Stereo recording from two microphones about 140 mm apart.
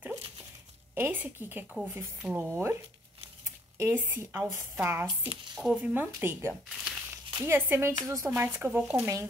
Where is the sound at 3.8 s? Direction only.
15° right (ahead or behind).